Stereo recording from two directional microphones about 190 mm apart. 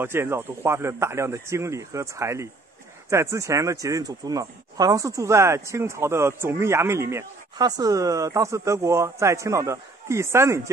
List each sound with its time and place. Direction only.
0.0 s speech: 10° right (ahead or behind)